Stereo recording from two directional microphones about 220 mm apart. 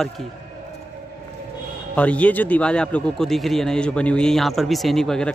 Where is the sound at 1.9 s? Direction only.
5° left (ahead or behind).